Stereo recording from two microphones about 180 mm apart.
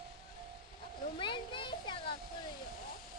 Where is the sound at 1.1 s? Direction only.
25° left (ahead or behind).